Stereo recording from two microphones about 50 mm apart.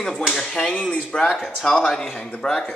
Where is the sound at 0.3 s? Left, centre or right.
Centre.